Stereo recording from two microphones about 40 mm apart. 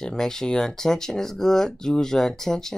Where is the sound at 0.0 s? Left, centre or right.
Centre.